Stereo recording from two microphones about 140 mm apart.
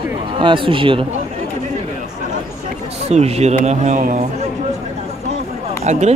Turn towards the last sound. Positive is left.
turn(degrees=-55)  # may be behind; listen again after turning